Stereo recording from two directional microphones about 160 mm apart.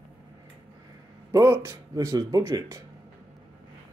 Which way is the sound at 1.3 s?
20° right (ahead or behind).